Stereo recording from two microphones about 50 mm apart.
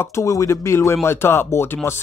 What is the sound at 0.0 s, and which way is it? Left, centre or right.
Speech, left.